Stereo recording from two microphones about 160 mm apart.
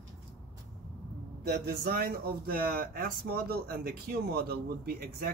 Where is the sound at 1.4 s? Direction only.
80° right.